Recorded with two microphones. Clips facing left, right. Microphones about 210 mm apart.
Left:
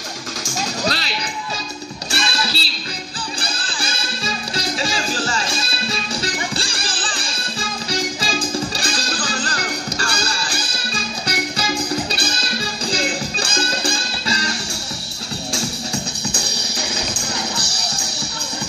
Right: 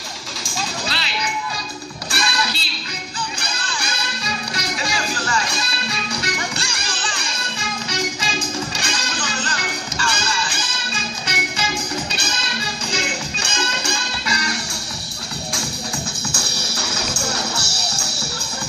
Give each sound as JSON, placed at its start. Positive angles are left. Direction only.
{"t": 0.4, "sound": "music", "side_deg": 40}
{"t": 2.0, "sound": "music", "side_deg": 25}
{"t": 16.3, "sound": "music", "side_deg": 15}